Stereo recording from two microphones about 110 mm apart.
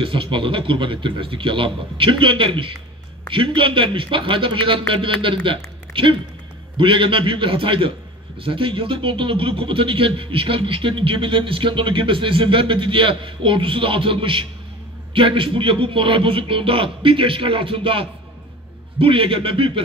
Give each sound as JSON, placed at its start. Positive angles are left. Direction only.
{"t": 0.0, "sound": "a man's voice", "side_deg": -50}